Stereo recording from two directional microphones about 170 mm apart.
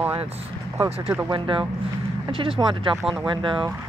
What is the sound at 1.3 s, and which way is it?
Speech, 30° right (ahead or behind).